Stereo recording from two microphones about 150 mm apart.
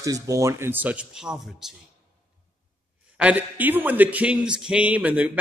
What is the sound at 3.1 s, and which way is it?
A man's voice, 10° right (ahead or behind).